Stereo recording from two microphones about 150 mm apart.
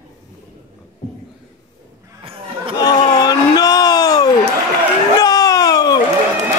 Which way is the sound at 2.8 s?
25° left (ahead or behind).